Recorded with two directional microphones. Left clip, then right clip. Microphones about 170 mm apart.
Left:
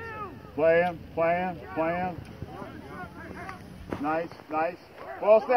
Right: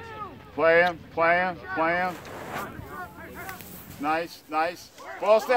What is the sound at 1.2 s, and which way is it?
Speech, 35° left (ahead or behind).